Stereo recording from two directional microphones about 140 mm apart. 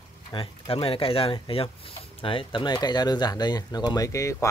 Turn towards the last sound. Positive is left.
turn(degrees=25)  # may be behind; listen again after turning